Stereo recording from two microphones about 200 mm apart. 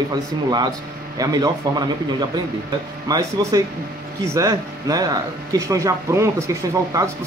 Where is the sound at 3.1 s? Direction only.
20° right (ahead or behind).